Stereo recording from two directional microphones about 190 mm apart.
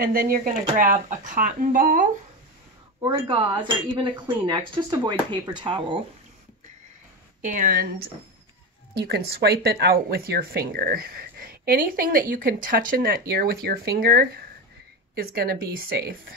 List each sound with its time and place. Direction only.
0.0 s speech: 50° right (ahead or behind)
3.0 s speech: 25° right (ahead or behind)
7.4 s speech: 45° right (ahead or behind)